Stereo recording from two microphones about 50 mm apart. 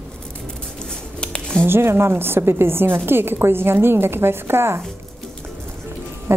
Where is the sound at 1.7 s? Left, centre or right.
Right.